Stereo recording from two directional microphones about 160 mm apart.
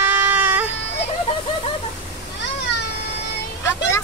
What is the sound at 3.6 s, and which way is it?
Vehicle, 15° left (ahead or behind).